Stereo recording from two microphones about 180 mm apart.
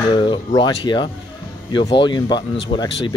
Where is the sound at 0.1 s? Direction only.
25° left (ahead or behind).